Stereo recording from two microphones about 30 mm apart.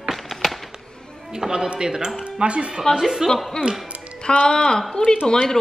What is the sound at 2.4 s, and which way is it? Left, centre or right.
Speech, right.